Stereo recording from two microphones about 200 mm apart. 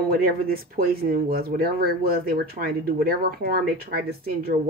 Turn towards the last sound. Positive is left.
turn(degrees=-50)  # may be behind; listen again after turning